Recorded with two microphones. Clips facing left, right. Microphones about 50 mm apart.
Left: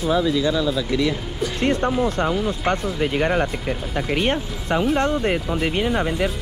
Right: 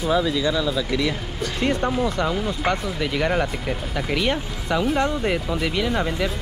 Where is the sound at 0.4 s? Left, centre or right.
Right.